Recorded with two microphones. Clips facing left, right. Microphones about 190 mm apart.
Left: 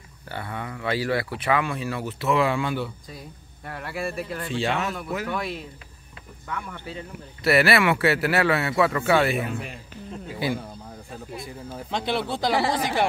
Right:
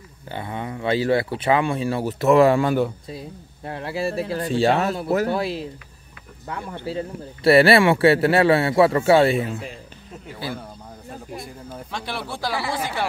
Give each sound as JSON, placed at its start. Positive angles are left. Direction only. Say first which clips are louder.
{"t": 0.3, "sound": "speech", "louder": "right 3 dB", "side_deg": -20}
{"t": 2.1, "sound": "speech", "louder": "right 8 dB", "side_deg": -45}
{"t": 3.1, "sound": "speech", "louder": "right 7 dB", "side_deg": -25}
{"t": 4.3, "sound": "speech", "louder": "right 10 dB", "side_deg": -40}
{"t": 11.3, "sound": "speech", "louder": "left 1 dB", "side_deg": 0}
{"t": 11.9, "sound": "speech", "louder": "left 5 dB", "side_deg": 20}